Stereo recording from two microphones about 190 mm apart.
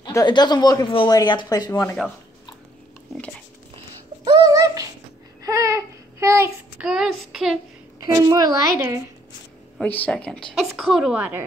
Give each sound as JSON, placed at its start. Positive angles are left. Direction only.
{"t": 0.0, "sound": "speech", "side_deg": 20}
{"t": 3.7, "sound": "a sound", "side_deg": -20}
{"t": 5.4, "sound": "child singing", "side_deg": -15}
{"t": 6.9, "sound": "child singing", "side_deg": 0}
{"t": 8.1, "sound": "a woman's voice", "side_deg": -20}
{"t": 9.8, "sound": "a woman's voice", "side_deg": 10}